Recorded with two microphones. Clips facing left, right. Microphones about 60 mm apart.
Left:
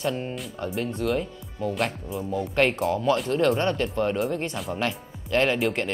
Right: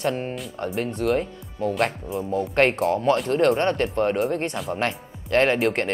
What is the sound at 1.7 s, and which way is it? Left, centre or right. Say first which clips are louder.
Speech: right 4 dB; centre.